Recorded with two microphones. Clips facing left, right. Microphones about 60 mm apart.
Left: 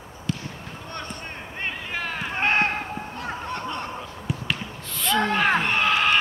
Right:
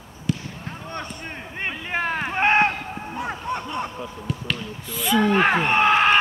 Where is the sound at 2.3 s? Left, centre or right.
Centre.